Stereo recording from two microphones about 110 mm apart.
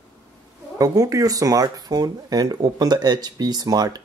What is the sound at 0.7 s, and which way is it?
Speech, 35° right (ahead or behind).